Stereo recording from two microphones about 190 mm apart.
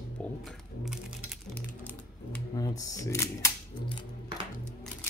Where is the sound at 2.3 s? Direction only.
20° left (ahead or behind).